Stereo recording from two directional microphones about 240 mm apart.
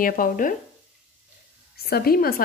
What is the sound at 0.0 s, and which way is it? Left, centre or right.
Speech, left.